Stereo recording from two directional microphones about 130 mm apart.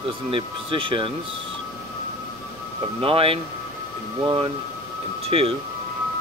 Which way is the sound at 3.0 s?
45° right (ahead or behind).